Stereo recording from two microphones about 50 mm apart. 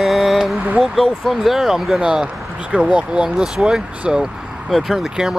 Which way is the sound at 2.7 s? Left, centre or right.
Right.